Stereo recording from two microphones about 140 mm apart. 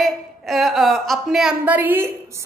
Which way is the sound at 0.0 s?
Centre (ahead or behind).